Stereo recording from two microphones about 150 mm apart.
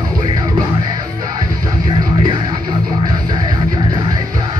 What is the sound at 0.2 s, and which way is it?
Music, 25° right (ahead or behind).